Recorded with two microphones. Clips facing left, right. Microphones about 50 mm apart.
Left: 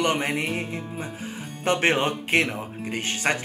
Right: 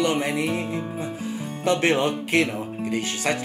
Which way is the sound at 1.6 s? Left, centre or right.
Left.